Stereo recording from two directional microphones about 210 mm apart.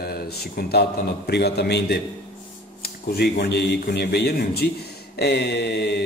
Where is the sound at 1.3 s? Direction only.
50° left (ahead or behind).